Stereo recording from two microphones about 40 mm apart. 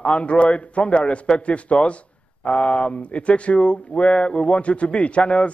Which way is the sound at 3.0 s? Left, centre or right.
Left.